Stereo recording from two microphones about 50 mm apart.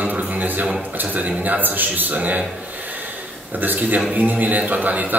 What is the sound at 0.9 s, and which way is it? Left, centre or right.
A man's voice, right.